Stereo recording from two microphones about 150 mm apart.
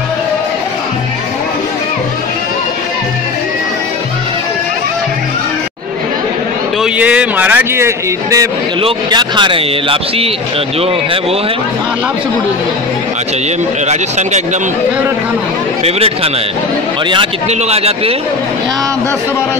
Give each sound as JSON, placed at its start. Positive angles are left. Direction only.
{"t": 6.8, "sound": "speech", "side_deg": -10}
{"t": 8.8, "sound": "speech", "side_deg": -30}
{"t": 13.8, "sound": "speech", "side_deg": -50}
{"t": 17.5, "sound": "speech", "side_deg": -45}